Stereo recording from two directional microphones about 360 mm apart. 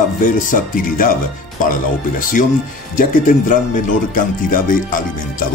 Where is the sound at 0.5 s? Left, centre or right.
Left.